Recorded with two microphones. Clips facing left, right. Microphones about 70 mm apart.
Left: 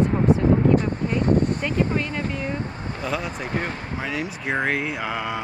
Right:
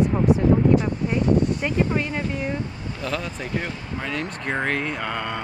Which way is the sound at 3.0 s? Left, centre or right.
Centre.